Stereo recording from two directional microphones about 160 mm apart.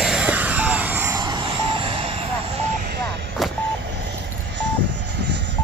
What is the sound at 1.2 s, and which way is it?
Vehicle, 30° right (ahead or behind).